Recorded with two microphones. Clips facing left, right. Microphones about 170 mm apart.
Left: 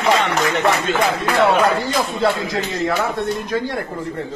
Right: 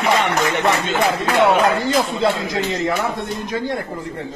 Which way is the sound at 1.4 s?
20° right (ahead or behind).